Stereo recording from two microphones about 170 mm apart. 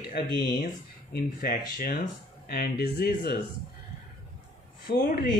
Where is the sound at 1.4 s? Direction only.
60° left (ahead or behind).